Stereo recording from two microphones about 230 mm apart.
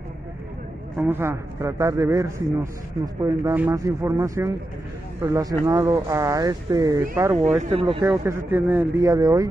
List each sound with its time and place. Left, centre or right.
0.9 s speech: centre
7.3 s speech: right
7.8 s speech: centre